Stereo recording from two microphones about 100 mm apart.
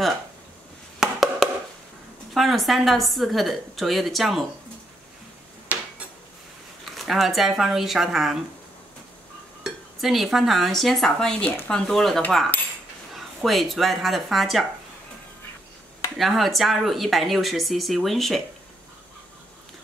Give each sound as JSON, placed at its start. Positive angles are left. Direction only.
{"t": 0.9, "sound": "a sound", "side_deg": -5}
{"t": 2.3, "sound": "speech", "side_deg": 0}
{"t": 5.7, "sound": "dishes", "side_deg": -15}
{"t": 6.8, "sound": "speech", "side_deg": 0}
{"t": 10.0, "sound": "speech", "side_deg": 0}
{"t": 16.2, "sound": "speech", "side_deg": 0}